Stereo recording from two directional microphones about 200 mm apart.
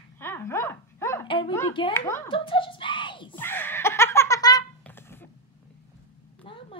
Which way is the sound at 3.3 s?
10° left (ahead or behind).